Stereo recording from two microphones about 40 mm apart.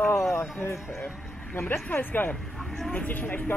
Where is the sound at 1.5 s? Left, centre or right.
Left.